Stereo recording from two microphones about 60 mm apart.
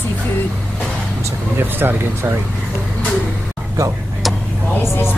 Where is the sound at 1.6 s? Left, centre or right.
Right.